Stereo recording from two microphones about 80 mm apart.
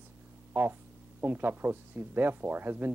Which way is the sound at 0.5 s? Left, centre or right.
Right.